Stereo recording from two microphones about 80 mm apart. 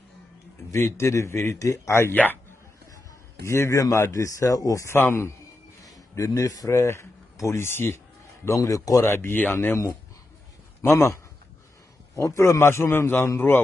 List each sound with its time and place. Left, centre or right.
0.7 s a man's voice: left
3.4 s a man's voice: left
4.9 s a man's voice: left
5.8 s speech: left
8.5 s a man's voice: left
9.0 s a man's voice: left
12.2 s a man's voice: left